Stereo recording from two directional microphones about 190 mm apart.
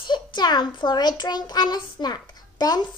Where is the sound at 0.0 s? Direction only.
25° left (ahead or behind).